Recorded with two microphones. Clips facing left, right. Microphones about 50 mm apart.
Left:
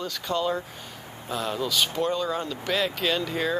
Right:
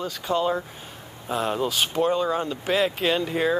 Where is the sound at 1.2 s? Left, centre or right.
Right.